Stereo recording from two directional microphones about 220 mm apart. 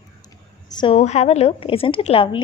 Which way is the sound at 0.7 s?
25° left (ahead or behind).